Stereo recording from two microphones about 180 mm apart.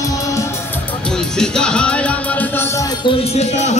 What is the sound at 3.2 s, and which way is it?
Music, 35° left (ahead or behind).